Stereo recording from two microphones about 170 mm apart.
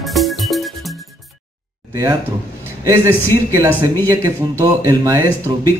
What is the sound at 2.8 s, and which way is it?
Speech, 20° right (ahead or behind).